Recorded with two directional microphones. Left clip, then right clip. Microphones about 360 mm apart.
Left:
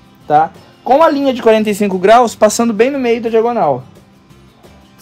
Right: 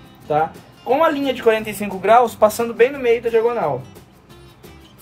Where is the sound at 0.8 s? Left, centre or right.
Centre.